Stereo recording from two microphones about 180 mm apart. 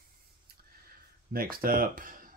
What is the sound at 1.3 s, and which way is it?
Speech, 55° right (ahead or behind).